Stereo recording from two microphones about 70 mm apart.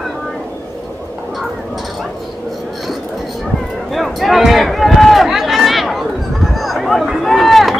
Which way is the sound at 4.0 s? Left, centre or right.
Centre.